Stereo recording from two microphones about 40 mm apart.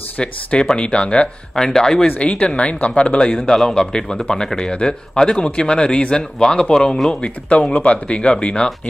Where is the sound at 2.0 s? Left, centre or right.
Left.